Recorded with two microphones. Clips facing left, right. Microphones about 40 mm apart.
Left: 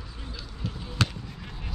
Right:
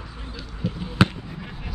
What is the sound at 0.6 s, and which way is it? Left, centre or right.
Basketball bounce, centre.